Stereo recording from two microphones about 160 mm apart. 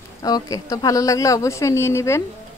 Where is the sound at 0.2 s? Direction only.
20° left (ahead or behind).